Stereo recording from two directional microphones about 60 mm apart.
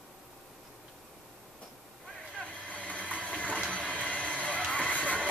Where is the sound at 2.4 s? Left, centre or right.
Left.